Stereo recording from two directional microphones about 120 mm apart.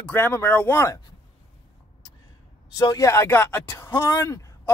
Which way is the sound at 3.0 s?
20° left (ahead or behind).